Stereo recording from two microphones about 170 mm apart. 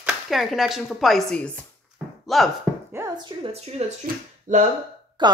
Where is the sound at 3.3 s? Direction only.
30° right (ahead or behind).